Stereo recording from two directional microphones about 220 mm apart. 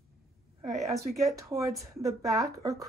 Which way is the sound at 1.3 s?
15° right (ahead or behind).